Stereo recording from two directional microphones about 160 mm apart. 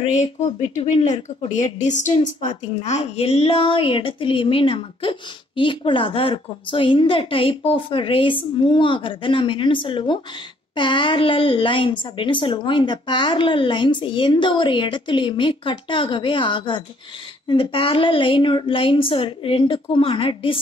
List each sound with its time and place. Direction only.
0.1 s speech: 45° left (ahead or behind)
1.0 s speech: 25° left (ahead or behind)
1.6 s a woman's voice: 50° left (ahead or behind); by 20.5 s 35° left (ahead or behind)